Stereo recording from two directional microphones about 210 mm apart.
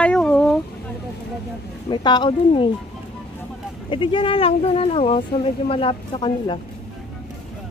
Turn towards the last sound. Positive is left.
turn(degrees=25)  # may be behind; listen again after turning